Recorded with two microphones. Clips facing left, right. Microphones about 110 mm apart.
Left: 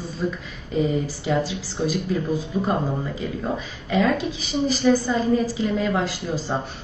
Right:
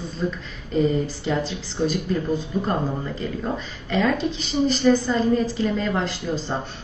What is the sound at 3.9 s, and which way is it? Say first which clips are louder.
A woman's voice: left 1 dB; 5° left (ahead or behind).